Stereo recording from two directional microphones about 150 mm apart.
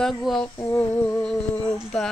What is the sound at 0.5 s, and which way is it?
Speech, 20° left (ahead or behind).